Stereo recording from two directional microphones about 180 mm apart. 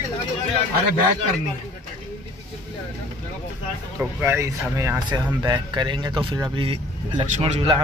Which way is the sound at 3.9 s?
15° right (ahead or behind).